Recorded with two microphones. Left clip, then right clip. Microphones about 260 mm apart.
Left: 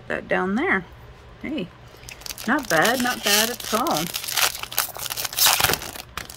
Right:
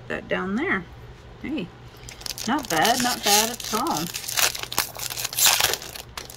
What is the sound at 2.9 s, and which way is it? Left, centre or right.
Speech, centre.